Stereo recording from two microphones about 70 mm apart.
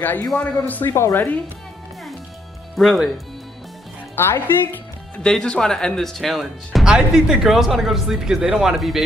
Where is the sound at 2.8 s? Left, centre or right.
Centre.